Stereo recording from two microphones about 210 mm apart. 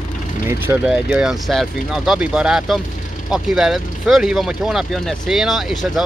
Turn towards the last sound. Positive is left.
turn(degrees=0)  # may be behind; listen again after turning